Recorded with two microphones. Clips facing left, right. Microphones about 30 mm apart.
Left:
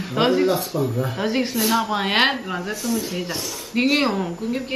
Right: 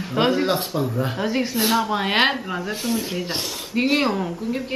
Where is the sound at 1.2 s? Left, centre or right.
Centre.